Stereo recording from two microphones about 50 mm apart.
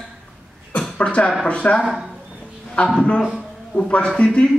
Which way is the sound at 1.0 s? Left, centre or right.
Left.